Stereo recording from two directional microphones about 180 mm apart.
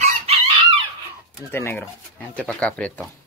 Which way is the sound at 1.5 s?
10° left (ahead or behind).